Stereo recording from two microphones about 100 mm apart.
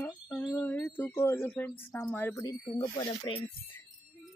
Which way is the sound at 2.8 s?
55° left (ahead or behind).